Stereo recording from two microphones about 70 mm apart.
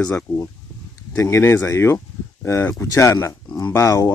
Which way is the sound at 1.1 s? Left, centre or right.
Left.